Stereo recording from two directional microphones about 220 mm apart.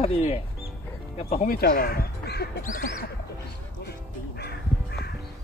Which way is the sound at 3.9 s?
45° left (ahead or behind).